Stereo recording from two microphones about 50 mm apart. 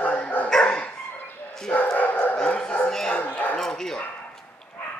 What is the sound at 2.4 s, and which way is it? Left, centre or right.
Dog, centre.